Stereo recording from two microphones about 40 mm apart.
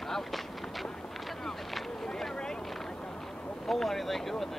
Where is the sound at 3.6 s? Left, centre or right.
Centre.